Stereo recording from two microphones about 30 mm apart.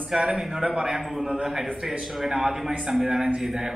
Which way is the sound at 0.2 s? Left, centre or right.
Centre.